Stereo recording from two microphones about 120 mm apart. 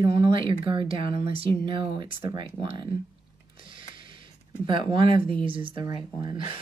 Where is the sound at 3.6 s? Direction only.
45° right (ahead or behind).